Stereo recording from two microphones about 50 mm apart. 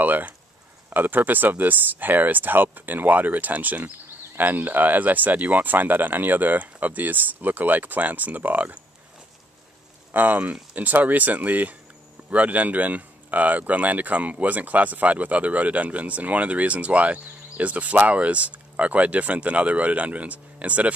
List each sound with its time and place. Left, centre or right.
0.0 s speech: right
10.1 s speech: right